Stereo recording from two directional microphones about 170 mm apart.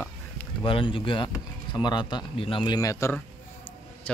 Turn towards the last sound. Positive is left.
turn(degrees=15)  # may be behind; listen again after turning